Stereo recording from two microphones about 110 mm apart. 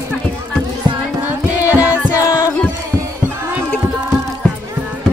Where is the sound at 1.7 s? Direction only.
10° right (ahead or behind).